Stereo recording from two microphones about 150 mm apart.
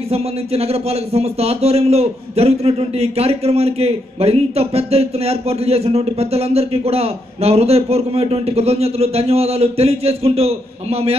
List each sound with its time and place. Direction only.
0.1 s a man's voice: 45° right (ahead or behind)